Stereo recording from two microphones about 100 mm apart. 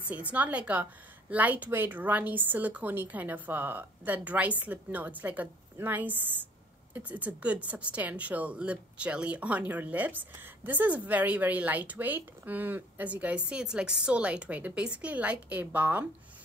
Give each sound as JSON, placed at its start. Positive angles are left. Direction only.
{"t": 0.1, "sound": "speech", "side_deg": -15}